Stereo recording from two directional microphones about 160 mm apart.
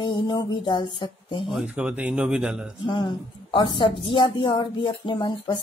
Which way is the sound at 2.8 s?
30° left (ahead or behind).